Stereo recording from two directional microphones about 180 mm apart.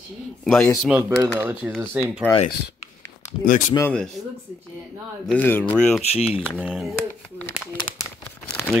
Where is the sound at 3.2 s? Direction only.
50° left (ahead or behind).